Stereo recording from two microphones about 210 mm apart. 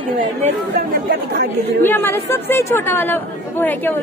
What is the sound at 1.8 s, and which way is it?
Speech, 10° left (ahead or behind).